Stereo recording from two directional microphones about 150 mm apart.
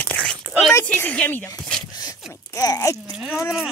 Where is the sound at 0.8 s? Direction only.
10° left (ahead or behind).